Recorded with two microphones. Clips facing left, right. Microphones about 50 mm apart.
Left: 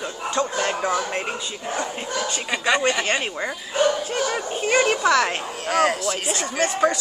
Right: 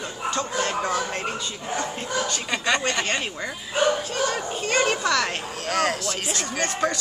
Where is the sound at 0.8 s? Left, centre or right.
Centre.